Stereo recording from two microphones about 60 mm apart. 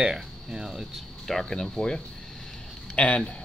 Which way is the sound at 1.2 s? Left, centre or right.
Centre.